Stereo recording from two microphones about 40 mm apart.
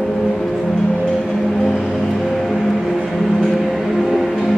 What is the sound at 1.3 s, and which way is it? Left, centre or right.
Vehicle, centre.